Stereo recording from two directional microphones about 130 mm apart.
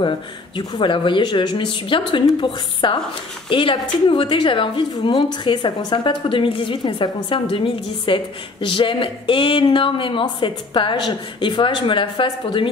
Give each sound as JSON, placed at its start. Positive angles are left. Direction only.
{"t": 0.6, "sound": "a woman's voice", "side_deg": 40}